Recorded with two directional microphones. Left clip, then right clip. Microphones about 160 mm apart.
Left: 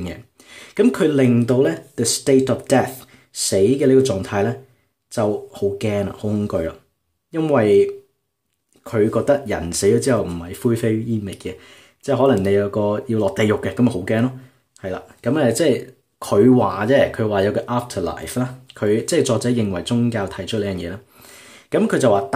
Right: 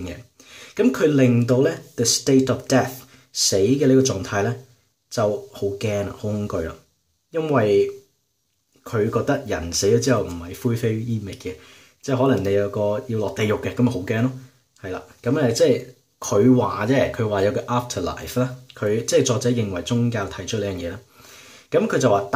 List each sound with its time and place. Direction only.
0.0 s speech: 30° left (ahead or behind)